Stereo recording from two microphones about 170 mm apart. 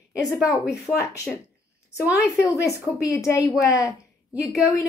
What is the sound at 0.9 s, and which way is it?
A woman's voice, 10° left (ahead or behind).